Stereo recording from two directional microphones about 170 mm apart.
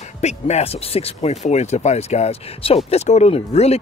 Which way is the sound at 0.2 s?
40° left (ahead or behind).